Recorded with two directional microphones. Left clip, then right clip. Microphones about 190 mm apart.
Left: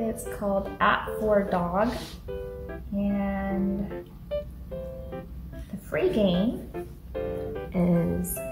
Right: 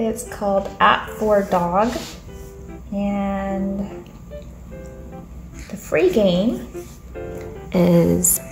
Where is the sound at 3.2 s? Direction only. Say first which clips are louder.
Right 7 dB; 30° right (ahead or behind).